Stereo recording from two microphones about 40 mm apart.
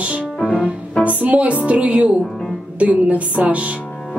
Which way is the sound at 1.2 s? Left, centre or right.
Right.